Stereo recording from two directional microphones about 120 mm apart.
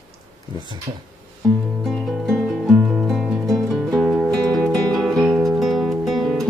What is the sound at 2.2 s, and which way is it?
Music, 5° left (ahead or behind).